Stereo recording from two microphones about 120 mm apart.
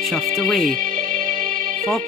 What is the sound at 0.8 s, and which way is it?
Music, 90° right.